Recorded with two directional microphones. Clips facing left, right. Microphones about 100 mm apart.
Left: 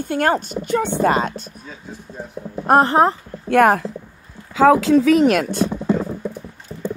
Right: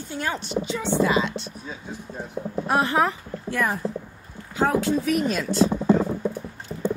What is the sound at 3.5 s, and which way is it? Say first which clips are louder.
Speech: left 12 dB; 70° left (ahead or behind).